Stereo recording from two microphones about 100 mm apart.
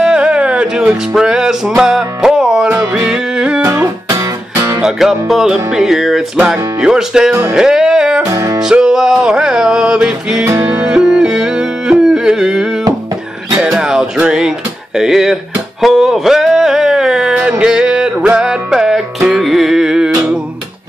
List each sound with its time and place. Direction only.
0.0 s music: 10° right (ahead or behind)
3.6 s music: 30° right (ahead or behind)
4.8 s music: 5° right (ahead or behind)
8.3 s music: 30° right (ahead or behind)
8.6 s music: 5° right (ahead or behind)
10.4 s music: 30° right (ahead or behind)
10.9 s music: 5° right (ahead or behind)
15.8 s a sound: 5° right (ahead or behind)
17.4 s music: 10° right (ahead or behind)